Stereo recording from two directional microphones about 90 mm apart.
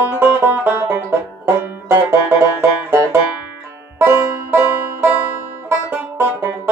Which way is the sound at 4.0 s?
25° right (ahead or behind).